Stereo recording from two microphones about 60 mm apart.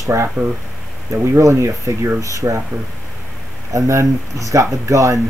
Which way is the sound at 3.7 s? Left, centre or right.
Right.